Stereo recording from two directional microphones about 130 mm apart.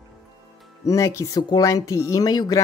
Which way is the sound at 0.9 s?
25° left (ahead or behind).